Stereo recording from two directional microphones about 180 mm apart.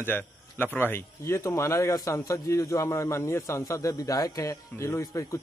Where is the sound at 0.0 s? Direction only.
10° left (ahead or behind).